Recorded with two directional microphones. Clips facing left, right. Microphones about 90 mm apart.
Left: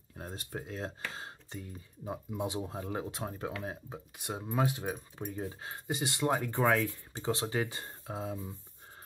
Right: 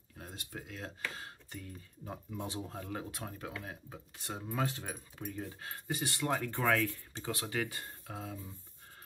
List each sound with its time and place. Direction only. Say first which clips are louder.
0.2 s speech: left 5 dB; 35° left (ahead or behind); by 4.9 s 15° left (ahead or behind)
4.9 s speech: left 3 dB; 30° left (ahead or behind)